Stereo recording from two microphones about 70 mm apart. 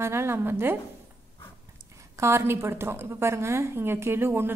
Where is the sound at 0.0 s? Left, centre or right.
Right.